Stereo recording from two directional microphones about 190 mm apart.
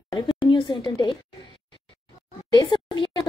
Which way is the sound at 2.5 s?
25° left (ahead or behind).